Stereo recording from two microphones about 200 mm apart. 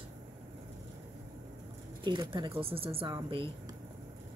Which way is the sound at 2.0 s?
25° right (ahead or behind).